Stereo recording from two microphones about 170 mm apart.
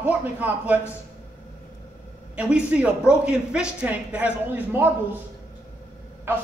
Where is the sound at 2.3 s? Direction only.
5° right (ahead or behind).